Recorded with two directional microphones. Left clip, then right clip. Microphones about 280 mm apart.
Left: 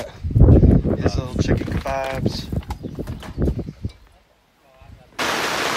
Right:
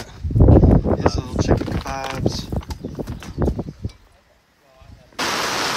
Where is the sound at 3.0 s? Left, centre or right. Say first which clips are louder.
Right 4 dB; centre.